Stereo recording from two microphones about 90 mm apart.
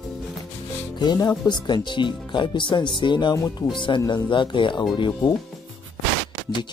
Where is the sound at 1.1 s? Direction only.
50° left (ahead or behind).